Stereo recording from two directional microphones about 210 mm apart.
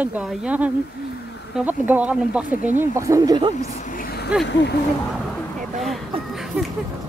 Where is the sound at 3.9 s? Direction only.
50° left (ahead or behind).